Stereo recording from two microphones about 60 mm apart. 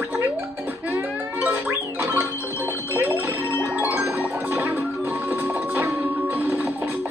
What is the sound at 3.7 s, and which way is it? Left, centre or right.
Music, right.